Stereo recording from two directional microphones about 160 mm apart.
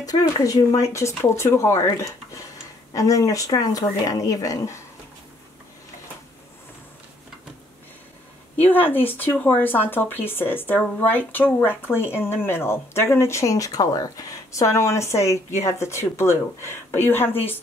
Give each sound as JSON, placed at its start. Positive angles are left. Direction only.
{"t": 0.0, "sound": "speech", "side_deg": 20}
{"t": 8.5, "sound": "speech", "side_deg": 10}